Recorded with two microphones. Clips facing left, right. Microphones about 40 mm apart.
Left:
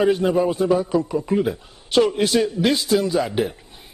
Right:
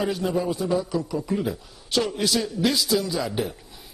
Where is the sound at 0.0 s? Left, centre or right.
Left.